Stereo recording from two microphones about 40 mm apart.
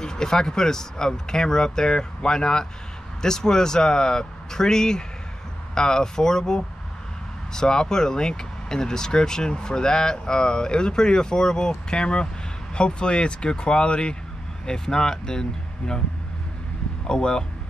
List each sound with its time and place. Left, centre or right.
0.0 s speech: centre
17.1 s speech: left